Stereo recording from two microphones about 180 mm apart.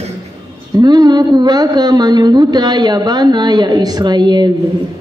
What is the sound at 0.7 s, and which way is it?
Speech, 20° right (ahead or behind).